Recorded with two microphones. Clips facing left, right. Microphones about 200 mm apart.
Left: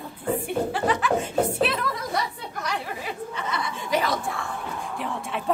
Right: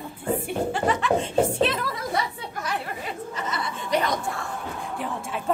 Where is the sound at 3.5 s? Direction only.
Centre (ahead or behind).